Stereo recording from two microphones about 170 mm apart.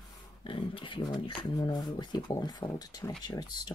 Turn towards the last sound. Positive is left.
turn(degrees=25)  # may be behind; listen again after turning